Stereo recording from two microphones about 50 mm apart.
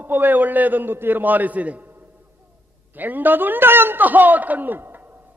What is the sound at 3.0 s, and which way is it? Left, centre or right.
A man's voice, right.